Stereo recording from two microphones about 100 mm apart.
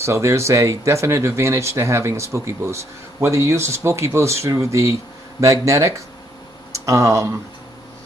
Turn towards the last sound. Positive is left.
turn(degrees=-30)  # may be behind; listen again after turning